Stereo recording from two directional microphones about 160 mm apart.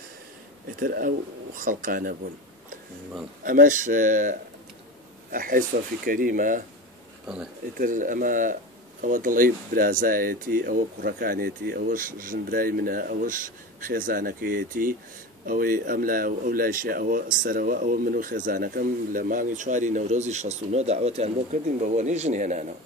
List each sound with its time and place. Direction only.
0.7 s speech: 65° right (ahead or behind)
3.4 s speech: 55° right (ahead or behind)
7.7 s speech: 55° right (ahead or behind)